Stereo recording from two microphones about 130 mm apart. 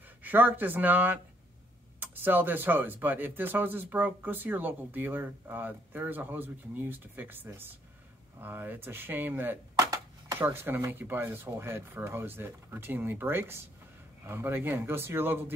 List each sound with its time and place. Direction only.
0.2 s speech: 15° right (ahead or behind)
9.8 s a sound: 25° right (ahead or behind)
10.5 s speech: 15° right (ahead or behind)